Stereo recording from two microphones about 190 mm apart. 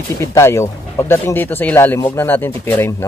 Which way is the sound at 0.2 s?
15° left (ahead or behind).